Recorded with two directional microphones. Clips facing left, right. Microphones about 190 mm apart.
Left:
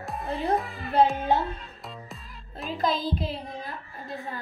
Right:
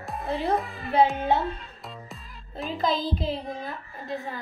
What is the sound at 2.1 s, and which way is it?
Music, centre (ahead or behind).